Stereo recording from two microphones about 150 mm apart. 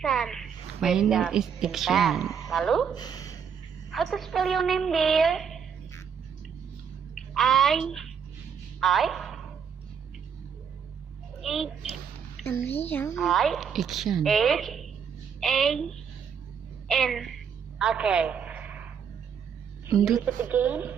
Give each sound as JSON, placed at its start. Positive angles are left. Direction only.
{"t": 0.0, "sound": "a woman's voice", "side_deg": 0}
{"t": 2.9, "sound": "speech", "side_deg": 25}
{"t": 3.9, "sound": "a woman's voice", "side_deg": 0}
{"t": 7.2, "sound": "a woman's voice", "side_deg": 0}
{"t": 8.7, "sound": "a sound", "side_deg": 0}
{"t": 11.4, "sound": "a woman's voice", "side_deg": 0}
{"t": 12.4, "sound": "a child's voice", "side_deg": 15}
{"t": 13.2, "sound": "a woman's voice", "side_deg": 0}
{"t": 16.8, "sound": "a sound", "side_deg": 0}
{"t": 20.2, "sound": "speech", "side_deg": -10}